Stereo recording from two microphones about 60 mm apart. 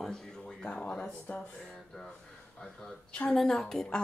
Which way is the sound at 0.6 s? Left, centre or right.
Centre.